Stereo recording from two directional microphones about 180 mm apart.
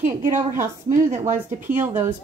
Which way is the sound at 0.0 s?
45° right (ahead or behind).